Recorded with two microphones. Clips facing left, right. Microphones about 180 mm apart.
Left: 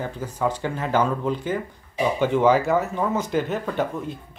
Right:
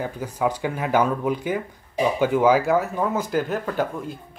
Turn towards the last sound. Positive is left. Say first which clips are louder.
# even
turn(degrees=0)  # may be behind; listen again after turning